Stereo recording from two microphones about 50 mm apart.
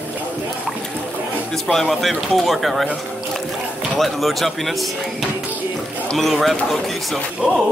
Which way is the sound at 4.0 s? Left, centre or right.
Centre.